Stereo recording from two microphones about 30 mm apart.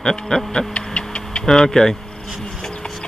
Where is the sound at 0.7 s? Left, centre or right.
Left.